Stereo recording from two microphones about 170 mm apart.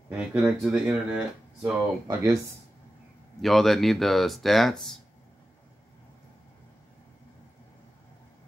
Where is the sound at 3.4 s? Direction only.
Centre (ahead or behind).